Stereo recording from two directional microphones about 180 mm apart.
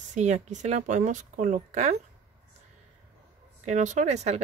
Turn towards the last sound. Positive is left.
turn(degrees=-40)  # may be behind; listen again after turning